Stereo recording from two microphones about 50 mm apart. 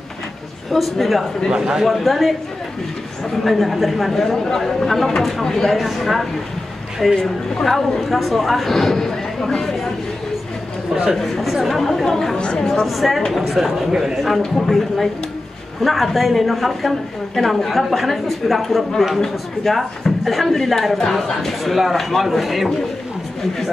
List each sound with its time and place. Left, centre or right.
0.7 s a man's voice: centre
1.5 s a man's voice: centre
1.9 s a man's voice: centre
3.4 s a man's voice: centre
11.1 s a man's voice: centre
12.4 s a woman's voice: centre
12.8 s a man's voice: centre